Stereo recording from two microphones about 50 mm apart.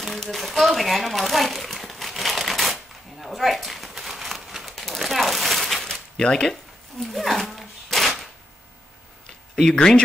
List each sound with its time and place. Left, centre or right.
0.2 s crumpling: centre
5.9 s zipper: centre
7.1 s dog: centre
9.8 s speech: left